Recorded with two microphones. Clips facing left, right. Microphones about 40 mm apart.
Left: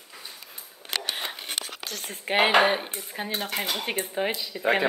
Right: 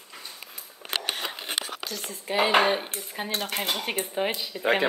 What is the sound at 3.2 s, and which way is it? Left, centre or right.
Speech, centre.